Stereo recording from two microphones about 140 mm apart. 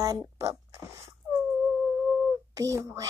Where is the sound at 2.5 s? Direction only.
25° right (ahead or behind).